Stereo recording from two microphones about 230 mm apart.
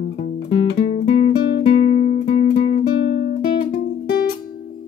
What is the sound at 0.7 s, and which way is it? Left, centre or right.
Music, left.